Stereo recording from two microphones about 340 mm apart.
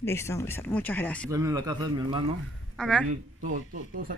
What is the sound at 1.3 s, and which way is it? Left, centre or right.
Speech, centre.